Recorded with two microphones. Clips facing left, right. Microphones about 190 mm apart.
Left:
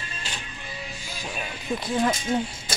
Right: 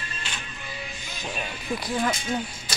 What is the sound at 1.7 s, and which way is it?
Speech, 25° left (ahead or behind).